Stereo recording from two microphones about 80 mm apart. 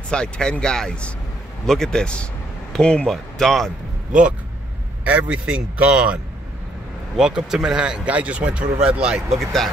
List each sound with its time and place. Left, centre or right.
0.1 s a man's voice: centre
4.1 s speech: centre
7.2 s speech: centre
9.4 s a man's voice: centre